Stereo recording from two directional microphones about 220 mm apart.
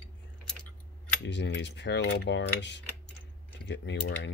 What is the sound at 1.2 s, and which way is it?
Speech, 50° left (ahead or behind).